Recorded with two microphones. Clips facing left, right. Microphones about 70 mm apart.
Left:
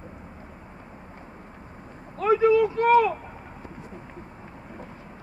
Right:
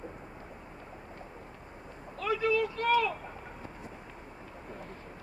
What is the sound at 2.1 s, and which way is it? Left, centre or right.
Speech, left.